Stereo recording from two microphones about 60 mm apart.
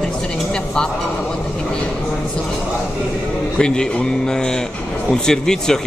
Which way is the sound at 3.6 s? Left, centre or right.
Centre.